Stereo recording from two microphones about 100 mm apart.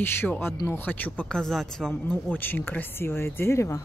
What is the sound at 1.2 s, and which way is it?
Speech, 5° left (ahead or behind).